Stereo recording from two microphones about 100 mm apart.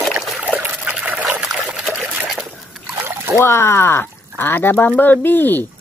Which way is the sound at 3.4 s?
25° left (ahead or behind).